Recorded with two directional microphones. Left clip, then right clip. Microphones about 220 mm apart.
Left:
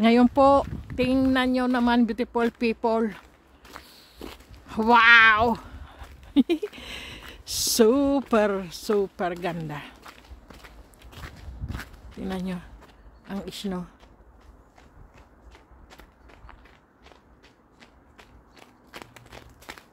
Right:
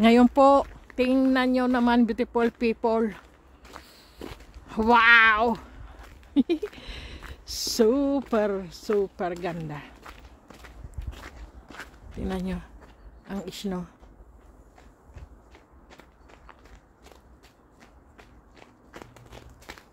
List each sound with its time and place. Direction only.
0.0 s speech: centre (ahead or behind)
6.7 s a sound: 10° left (ahead or behind)
7.5 s speech: 15° left (ahead or behind)
10.0 s walk: 5° right (ahead or behind)
12.2 s speech: centre (ahead or behind)
15.5 s walk: 5° left (ahead or behind)
18.6 s walk: 15° left (ahead or behind)